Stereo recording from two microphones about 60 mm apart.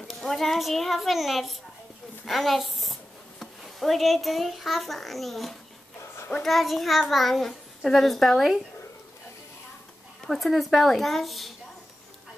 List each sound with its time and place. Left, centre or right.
0.1 s a child's voice: centre
5.9 s a sound: left
6.4 s a child's voice: centre
10.2 s a child's voice: centre